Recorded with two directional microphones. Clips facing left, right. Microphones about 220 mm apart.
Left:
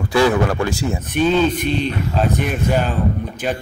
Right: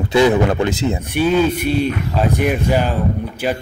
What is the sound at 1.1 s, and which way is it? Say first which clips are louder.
Speech: even; 10° right (ahead or behind).